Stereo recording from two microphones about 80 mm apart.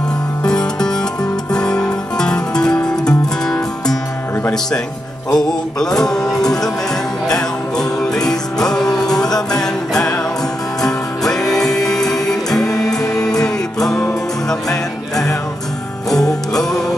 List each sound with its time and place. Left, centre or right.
0.4 s music: centre
5.3 s music: centre